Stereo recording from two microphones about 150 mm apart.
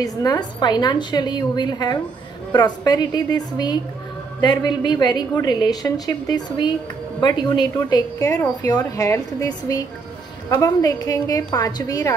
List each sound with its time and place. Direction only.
0.0 s a woman's voice: 25° left (ahead or behind)
7.7 s a woman's voice: 20° left (ahead or behind)